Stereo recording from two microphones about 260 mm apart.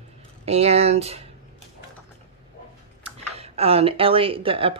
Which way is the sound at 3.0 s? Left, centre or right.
Right.